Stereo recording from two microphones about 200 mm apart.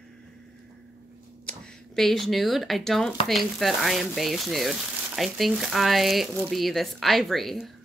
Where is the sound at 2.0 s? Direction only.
Centre (ahead or behind).